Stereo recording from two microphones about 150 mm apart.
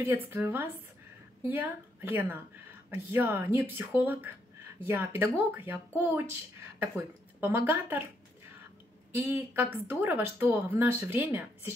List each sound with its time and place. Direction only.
0.0 s speech: 15° right (ahead or behind)
9.1 s speech: 15° right (ahead or behind)